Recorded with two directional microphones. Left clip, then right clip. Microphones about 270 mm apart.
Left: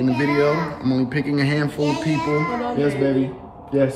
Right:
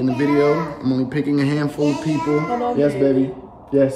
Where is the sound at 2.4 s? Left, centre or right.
Right.